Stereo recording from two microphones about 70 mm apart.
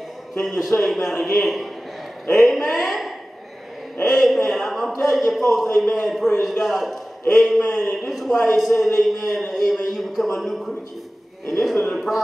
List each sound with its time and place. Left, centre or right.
0.3 s a man's voice: centre